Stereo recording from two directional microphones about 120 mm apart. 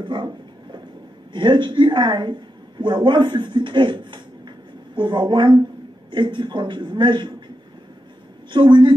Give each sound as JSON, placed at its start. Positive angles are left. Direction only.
{"t": 0.0, "sound": "a sound", "side_deg": -40}
{"t": 1.3, "sound": "speech", "side_deg": -40}
{"t": 8.5, "sound": "a woman's voice", "side_deg": -40}